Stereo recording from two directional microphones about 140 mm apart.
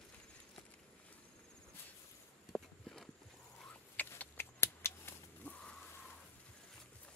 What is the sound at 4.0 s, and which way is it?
Chicken, 15° left (ahead or behind).